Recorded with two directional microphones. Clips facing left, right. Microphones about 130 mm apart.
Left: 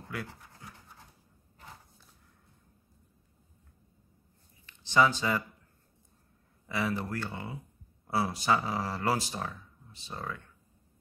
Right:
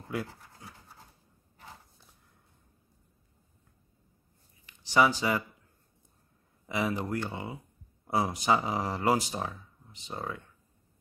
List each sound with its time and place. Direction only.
0.1 s speech: 25° right (ahead or behind)
4.6 s speech: 15° right (ahead or behind)
6.7 s speech: 15° right (ahead or behind)